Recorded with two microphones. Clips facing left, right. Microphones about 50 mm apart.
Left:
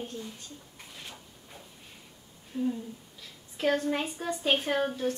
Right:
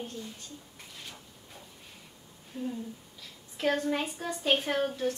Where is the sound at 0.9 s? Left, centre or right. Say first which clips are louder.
Left 1 dB; centre.